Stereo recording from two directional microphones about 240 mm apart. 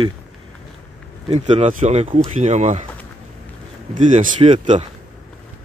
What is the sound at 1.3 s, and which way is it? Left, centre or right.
Speech, right.